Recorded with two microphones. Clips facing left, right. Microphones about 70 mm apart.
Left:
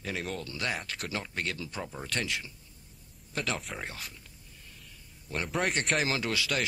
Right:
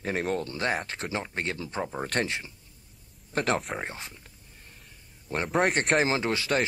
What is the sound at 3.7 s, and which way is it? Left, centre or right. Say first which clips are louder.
Speech: right 4 dB; right.